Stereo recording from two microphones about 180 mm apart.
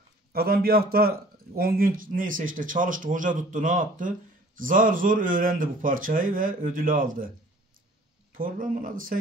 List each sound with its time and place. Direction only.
0.3 s a man's voice: 60° right (ahead or behind)
8.3 s a man's voice: 50° right (ahead or behind)